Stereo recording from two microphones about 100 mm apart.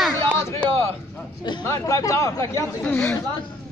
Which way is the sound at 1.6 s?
30° left (ahead or behind).